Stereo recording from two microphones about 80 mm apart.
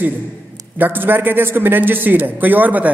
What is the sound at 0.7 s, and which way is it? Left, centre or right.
A man's voice, right.